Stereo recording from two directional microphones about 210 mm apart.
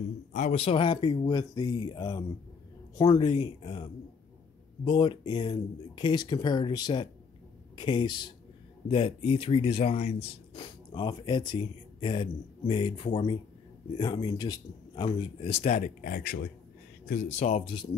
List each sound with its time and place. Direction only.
0.3 s speech: 35° left (ahead or behind)